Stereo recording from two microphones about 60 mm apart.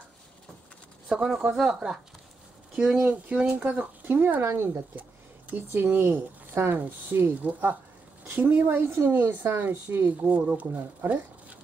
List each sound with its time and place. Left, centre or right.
1.0 s speech: centre
2.7 s speech: right
4.0 s speech: right
5.8 s speech: right